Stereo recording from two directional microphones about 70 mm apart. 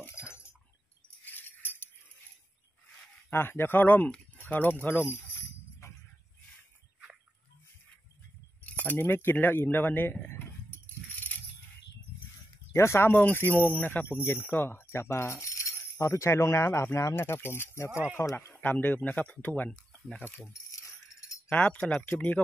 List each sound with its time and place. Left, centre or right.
0.1 s chink: left
1.2 s a sound: left
3.3 s speech: left
8.6 s speech: left
10.2 s keys jangling: left
12.7 s speech: left
17.1 s speech: left
18.2 s speech: left
21.5 s speech: centre